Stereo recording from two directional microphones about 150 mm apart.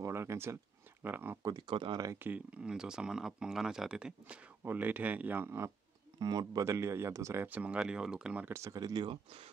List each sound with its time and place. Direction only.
0.0 s speech: 20° right (ahead or behind)
2.1 s speech: 10° right (ahead or behind)
6.1 s speech: 25° right (ahead or behind)